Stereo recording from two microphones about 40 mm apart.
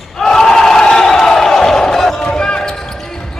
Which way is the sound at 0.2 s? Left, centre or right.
Centre.